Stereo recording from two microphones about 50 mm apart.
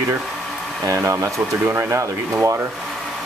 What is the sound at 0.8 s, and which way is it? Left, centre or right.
Speech, right.